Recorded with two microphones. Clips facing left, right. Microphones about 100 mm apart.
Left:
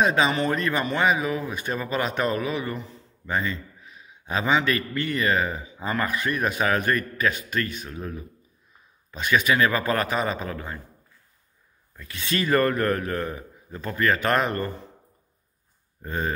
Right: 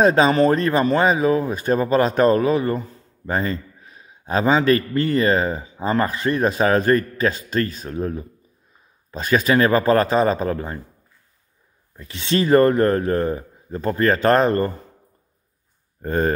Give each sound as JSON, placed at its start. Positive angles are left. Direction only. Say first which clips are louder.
{"t": 0.0, "sound": "speech", "louder": "right 7 dB", "side_deg": -40}
{"t": 12.0, "sound": "speech", "louder": "right 7 dB", "side_deg": -25}
{"t": 16.0, "sound": "speech", "louder": "right 8 dB", "side_deg": -45}